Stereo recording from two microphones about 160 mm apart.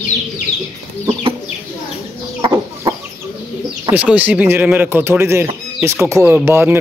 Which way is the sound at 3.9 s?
10° right (ahead or behind).